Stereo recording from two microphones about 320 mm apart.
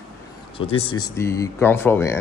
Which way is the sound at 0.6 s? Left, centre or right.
Centre.